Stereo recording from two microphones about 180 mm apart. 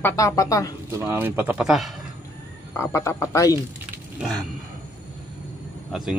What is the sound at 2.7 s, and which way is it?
Speech, 15° left (ahead or behind).